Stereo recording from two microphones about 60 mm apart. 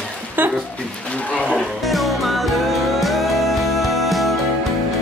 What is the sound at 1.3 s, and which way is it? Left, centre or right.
Speech, centre.